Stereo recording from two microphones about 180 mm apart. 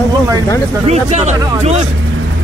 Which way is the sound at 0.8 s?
40° right (ahead or behind).